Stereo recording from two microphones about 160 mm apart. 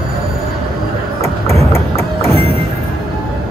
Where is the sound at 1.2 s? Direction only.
20° left (ahead or behind).